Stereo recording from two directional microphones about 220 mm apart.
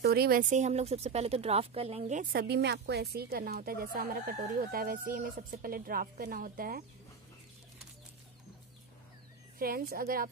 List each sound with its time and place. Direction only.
0.0 s speech: 45° right (ahead or behind)
2.4 s a woman's voice: 50° right (ahead or behind)
9.6 s a woman's voice: 40° right (ahead or behind)